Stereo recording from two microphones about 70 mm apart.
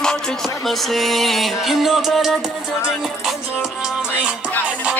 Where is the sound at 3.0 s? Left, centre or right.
Centre.